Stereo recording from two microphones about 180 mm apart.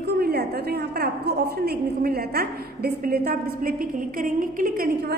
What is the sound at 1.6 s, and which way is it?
A woman's voice, 60° right (ahead or behind).